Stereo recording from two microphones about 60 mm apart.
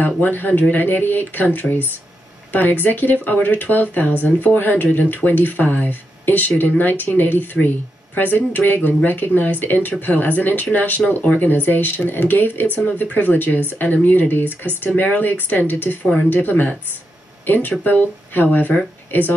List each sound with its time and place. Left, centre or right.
0.0 s speech: left
16.1 s speech: left